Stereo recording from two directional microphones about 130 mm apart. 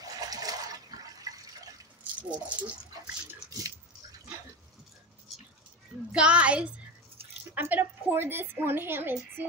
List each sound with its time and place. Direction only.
0.0 s water: 30° right (ahead or behind)
2.2 s a woman's voice: 10° right (ahead or behind)
3.4 s a sound: 30° right (ahead or behind)
6.1 s a woman's voice: 10° right (ahead or behind)